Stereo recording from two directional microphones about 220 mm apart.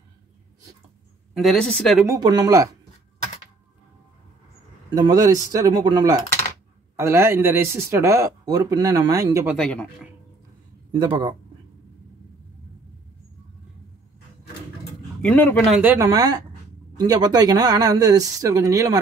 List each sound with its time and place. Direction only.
1.3 s speech: centre (ahead or behind)
2.0 s speech: 20° right (ahead or behind)
4.9 s speech: 15° right (ahead or behind)
9.6 s speech: 5° left (ahead or behind)
10.9 s speech: 20° right (ahead or behind)
15.2 s speech: 5° left (ahead or behind); by 18.9 s 15° right (ahead or behind)